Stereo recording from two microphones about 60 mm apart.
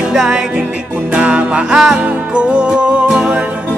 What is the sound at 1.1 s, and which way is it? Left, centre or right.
Music, right.